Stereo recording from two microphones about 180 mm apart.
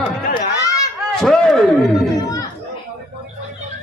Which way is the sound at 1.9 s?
20° left (ahead or behind).